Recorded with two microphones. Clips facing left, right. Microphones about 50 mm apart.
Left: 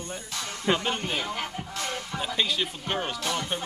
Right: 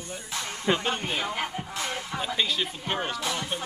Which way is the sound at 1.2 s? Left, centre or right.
Centre.